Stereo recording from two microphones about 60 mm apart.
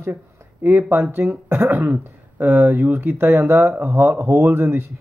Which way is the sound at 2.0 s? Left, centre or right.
Right.